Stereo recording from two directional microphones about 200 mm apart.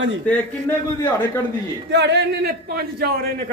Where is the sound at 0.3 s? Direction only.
10° left (ahead or behind).